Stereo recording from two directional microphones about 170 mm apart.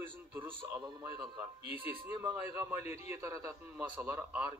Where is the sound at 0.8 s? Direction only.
20° right (ahead or behind).